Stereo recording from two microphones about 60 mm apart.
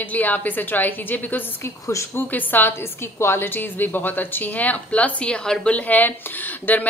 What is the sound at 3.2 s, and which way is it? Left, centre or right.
Speech, left.